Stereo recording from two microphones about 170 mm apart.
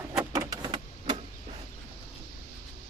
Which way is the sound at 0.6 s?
30° right (ahead or behind).